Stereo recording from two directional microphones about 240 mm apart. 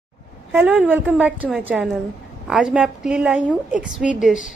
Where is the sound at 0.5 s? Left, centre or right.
Centre.